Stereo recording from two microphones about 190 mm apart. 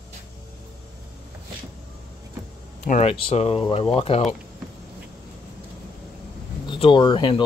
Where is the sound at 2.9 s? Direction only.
35° left (ahead or behind).